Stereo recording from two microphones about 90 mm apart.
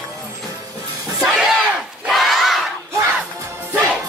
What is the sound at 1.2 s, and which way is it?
Battle cry, 5° right (ahead or behind).